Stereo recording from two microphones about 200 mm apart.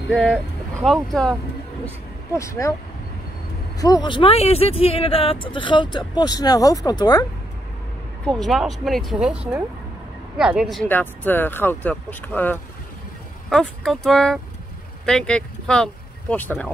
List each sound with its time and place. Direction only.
0.8 s speech: centre (ahead or behind)
2.3 s speech: 15° left (ahead or behind)
3.8 s speech: 20° left (ahead or behind)
8.3 s speech: centre (ahead or behind)